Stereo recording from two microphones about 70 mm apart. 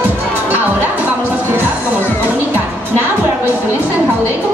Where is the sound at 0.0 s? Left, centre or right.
Right.